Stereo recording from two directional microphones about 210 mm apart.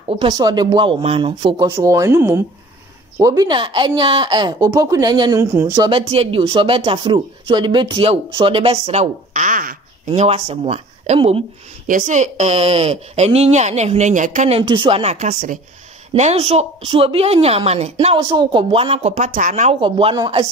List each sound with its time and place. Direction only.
0.1 s a woman's voice: 20° right (ahead or behind)
5.9 s a woman's voice: 25° right (ahead or behind)
14.6 s a woman's voice: 20° right (ahead or behind)